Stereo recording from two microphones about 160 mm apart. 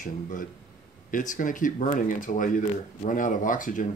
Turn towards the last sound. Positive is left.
turn(degrees=55)  # may be behind; listen again after turning